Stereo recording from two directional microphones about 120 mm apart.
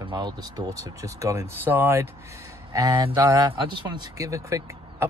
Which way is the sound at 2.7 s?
30° right (ahead or behind).